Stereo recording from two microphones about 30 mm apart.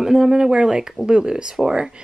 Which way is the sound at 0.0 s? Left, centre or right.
Centre.